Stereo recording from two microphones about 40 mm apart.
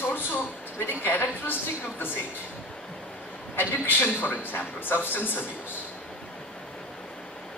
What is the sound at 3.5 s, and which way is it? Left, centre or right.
A man's voice, left.